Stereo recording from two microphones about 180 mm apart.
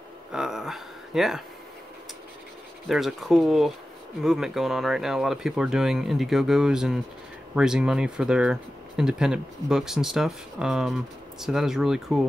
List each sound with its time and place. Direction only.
0.3 s speech: 5° right (ahead or behind)
2.9 s speech: centre (ahead or behind)